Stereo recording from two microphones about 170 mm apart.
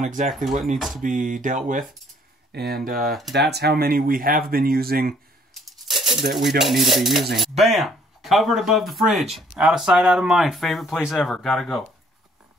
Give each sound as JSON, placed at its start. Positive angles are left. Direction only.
{"t": 0.0, "sound": "speech", "side_deg": -50}
{"t": 0.7, "sound": "speech", "side_deg": 0}
{"t": 1.0, "sound": "speech", "side_deg": -50}
{"t": 2.5, "sound": "speech", "side_deg": -70}
{"t": 3.1, "sound": "speech", "side_deg": 0}
{"t": 3.3, "sound": "speech", "side_deg": -75}
{"t": 5.5, "sound": "a sound", "side_deg": 0}
{"t": 6.6, "sound": "speech", "side_deg": 0}